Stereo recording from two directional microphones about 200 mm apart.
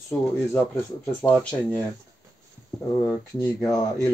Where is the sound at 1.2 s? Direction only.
5° left (ahead or behind).